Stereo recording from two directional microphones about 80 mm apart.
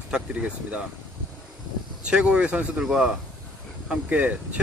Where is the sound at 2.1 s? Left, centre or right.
Centre.